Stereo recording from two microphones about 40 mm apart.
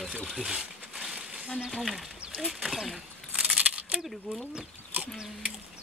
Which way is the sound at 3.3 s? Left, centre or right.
Right.